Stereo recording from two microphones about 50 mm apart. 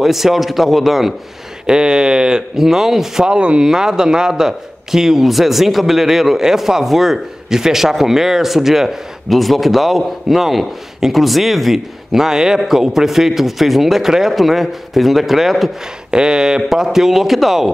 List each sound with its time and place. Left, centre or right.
0.0 s a man's voice: centre
1.7 s a man's voice: centre
16.1 s speech: centre